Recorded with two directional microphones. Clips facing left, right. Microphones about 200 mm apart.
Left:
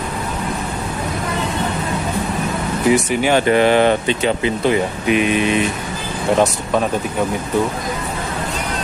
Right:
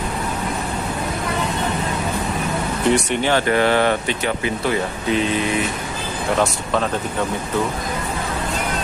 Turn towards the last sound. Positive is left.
turn(degrees=15)  # may be behind; listen again after turning